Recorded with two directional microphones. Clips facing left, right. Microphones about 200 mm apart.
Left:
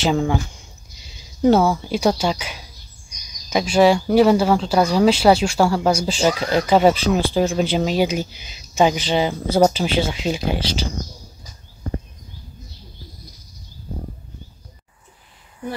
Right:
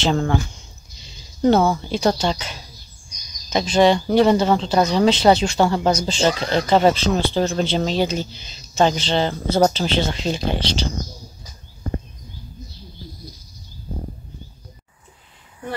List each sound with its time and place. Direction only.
0.0 s speech: 10° left (ahead or behind)